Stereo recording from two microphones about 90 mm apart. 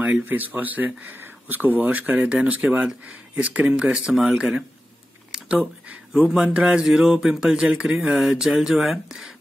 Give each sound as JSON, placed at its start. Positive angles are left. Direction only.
{"t": 0.0, "sound": "speech", "side_deg": -20}